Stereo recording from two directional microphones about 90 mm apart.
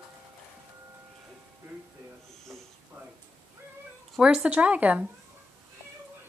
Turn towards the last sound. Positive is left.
turn(degrees=-15)  # may be behind; listen again after turning